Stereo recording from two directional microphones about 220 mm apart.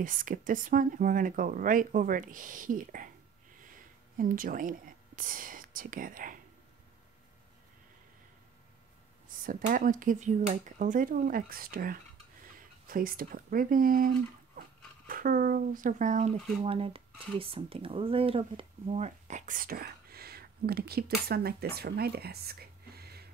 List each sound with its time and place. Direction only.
0.0 s speech: 40° right (ahead or behind)
4.2 s speech: 40° right (ahead or behind)
9.4 s speech: 40° right (ahead or behind)